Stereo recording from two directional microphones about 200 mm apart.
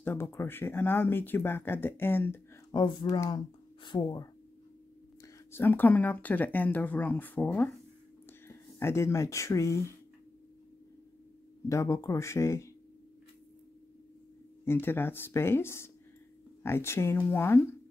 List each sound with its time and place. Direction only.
0.0 s speech: 10° left (ahead or behind)
2.8 s speech: 20° left (ahead or behind)
11.7 s speech: 15° left (ahead or behind)
14.6 s speech: 10° left (ahead or behind)